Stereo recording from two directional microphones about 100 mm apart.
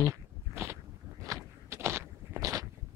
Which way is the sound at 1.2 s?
30° right (ahead or behind).